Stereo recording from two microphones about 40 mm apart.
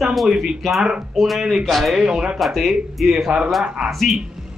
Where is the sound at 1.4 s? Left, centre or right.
Centre.